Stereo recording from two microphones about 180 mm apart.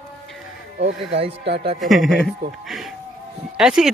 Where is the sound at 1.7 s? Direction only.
Centre (ahead or behind).